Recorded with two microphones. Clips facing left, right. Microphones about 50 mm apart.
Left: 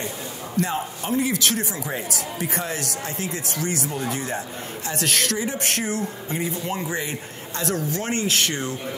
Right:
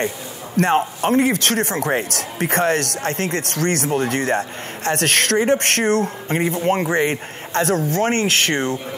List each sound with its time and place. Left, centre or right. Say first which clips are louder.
0.6 s speech: right 8 dB; right